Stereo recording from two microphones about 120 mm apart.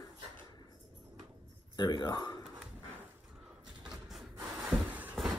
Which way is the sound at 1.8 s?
35° left (ahead or behind).